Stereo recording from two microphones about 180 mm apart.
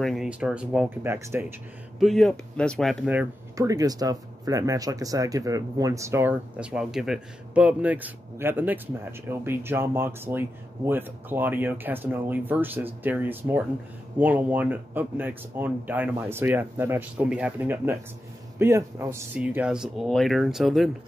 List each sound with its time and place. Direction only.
0.0 s speech: centre (ahead or behind)
2.0 s speech: centre (ahead or behind)
3.5 s speech: 20° right (ahead or behind); by 20.9 s centre (ahead or behind)